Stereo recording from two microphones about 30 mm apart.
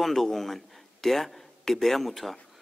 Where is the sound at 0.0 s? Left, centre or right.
Centre.